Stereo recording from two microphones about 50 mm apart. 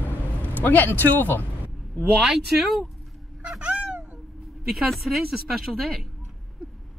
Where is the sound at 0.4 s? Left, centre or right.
Left.